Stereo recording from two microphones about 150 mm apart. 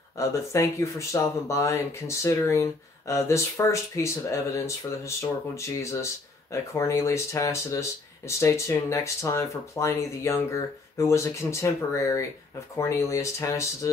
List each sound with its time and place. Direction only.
0.2 s speech: 20° left (ahead or behind)